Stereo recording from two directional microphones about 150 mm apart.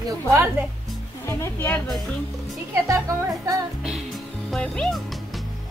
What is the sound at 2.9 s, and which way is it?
Speech, 20° right (ahead or behind).